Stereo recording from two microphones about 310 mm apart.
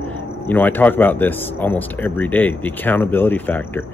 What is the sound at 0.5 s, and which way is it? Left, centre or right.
Speech, centre.